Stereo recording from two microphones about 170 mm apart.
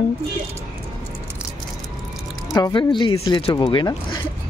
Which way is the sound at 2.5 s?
25° left (ahead or behind).